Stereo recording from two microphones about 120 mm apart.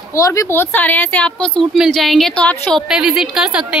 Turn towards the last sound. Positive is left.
turn(degrees=-5)  # may be behind; listen again after turning